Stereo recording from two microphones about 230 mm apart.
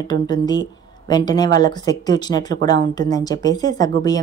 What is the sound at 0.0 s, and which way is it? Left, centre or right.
Speech, centre.